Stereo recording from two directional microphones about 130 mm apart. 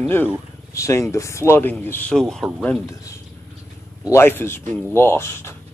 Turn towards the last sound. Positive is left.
turn(degrees=20)  # may be behind; listen again after turning